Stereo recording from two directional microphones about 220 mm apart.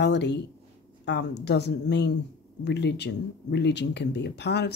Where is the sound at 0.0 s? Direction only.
50° left (ahead or behind).